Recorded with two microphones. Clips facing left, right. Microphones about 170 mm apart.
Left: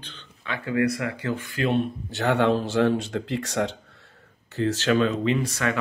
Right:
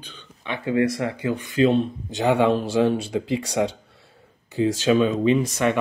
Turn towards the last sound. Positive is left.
turn(degrees=-20)  # may be behind; listen again after turning